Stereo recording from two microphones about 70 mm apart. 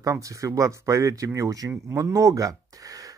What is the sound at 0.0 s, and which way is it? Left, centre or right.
Speech, right.